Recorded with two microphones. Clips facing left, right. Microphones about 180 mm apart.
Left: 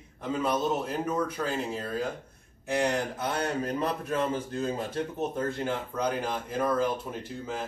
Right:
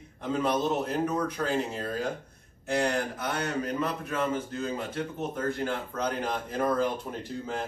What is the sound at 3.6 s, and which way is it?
A man's voice, 35° left (ahead or behind).